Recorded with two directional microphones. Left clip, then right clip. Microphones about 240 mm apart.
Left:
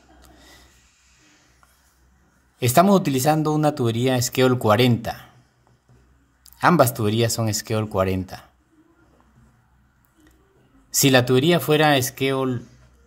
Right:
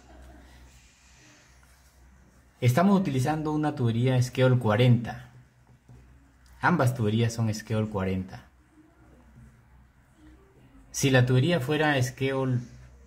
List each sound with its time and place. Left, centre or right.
2.6 s speech: left
6.6 s speech: left
10.9 s speech: left